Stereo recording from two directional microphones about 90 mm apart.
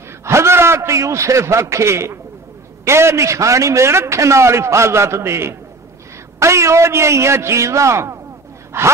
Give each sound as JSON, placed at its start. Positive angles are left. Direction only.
{"t": 0.2, "sound": "a man's voice", "side_deg": -30}
{"t": 8.7, "sound": "gasp", "side_deg": -30}